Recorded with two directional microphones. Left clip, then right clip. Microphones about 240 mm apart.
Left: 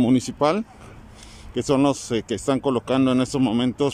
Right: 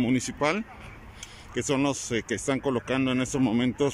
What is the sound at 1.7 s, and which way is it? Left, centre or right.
Speech, centre.